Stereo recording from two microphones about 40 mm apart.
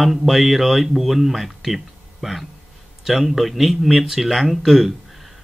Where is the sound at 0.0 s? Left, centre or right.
Centre.